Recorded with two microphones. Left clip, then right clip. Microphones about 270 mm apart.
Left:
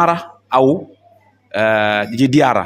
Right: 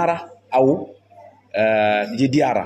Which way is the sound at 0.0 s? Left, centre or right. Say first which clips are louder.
Left 6 dB; left.